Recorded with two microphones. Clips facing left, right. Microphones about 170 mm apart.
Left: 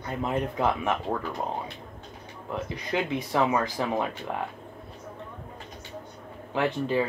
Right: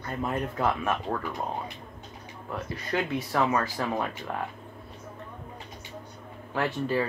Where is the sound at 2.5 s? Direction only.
15° left (ahead or behind).